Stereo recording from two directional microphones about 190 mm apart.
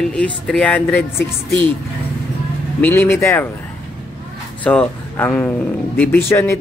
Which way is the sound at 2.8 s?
10° left (ahead or behind).